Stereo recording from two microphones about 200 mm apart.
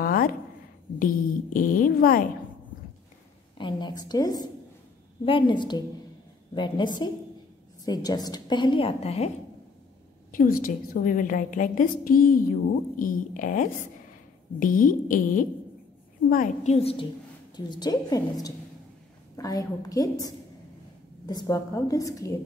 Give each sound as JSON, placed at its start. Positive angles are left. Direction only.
{"t": 0.0, "sound": "a sound", "side_deg": 45}
{"t": 0.9, "sound": "a woman's voice", "side_deg": 45}
{"t": 3.5, "sound": "a woman's voice", "side_deg": 25}
{"t": 10.3, "sound": "a woman's voice", "side_deg": 45}
{"t": 16.7, "sound": "a woman's voice", "side_deg": 25}